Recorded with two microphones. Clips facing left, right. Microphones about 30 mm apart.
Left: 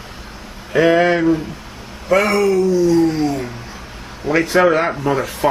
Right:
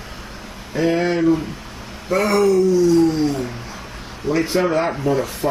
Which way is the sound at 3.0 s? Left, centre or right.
Centre.